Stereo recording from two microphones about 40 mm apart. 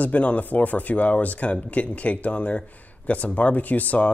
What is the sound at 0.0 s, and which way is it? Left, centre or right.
Speech, left.